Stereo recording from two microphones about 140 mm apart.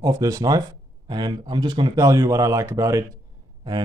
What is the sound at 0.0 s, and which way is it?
Speech, 25° right (ahead or behind).